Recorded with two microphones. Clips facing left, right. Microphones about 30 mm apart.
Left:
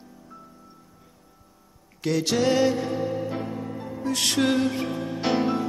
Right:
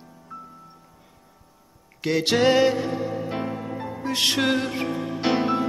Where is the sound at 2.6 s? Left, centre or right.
Centre.